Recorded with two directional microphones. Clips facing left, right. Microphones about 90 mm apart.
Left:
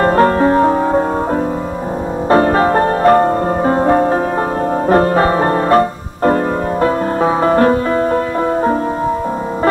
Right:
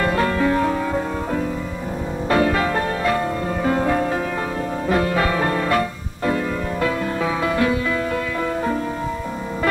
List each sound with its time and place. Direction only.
0.0 s music: 40° left (ahead or behind)
2.2 s music: 40° left (ahead or behind)